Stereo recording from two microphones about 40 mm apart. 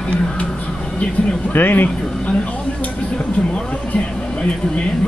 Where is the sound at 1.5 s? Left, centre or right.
Left.